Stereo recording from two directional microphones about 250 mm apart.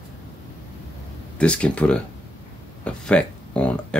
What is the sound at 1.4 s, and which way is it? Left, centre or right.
Speech, centre.